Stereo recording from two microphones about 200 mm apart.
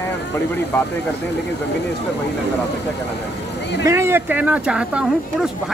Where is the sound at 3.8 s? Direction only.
15° right (ahead or behind).